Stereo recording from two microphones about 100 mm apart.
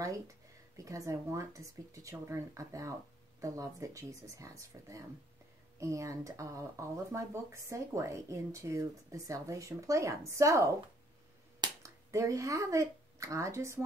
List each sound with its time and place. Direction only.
0.8 s speech: 35° right (ahead or behind)